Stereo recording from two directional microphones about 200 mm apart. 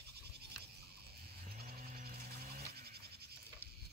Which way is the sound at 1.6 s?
50° right (ahead or behind).